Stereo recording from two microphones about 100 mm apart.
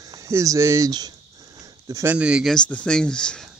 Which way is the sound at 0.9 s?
40° right (ahead or behind).